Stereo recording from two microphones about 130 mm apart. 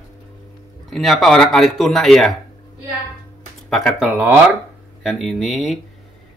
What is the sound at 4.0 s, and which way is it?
Speech, 15° right (ahead or behind).